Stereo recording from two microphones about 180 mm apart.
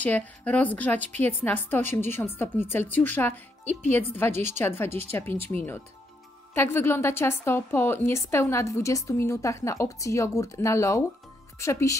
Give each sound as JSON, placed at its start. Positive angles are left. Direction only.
{"t": 0.0, "sound": "a woman's voice", "side_deg": 10}